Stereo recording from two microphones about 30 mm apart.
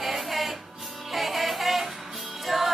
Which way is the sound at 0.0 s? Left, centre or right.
Centre.